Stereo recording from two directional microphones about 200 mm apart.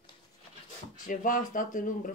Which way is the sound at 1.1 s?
40° left (ahead or behind).